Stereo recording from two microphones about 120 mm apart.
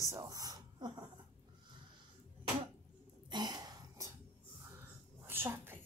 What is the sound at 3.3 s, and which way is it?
Cough, 35° right (ahead or behind).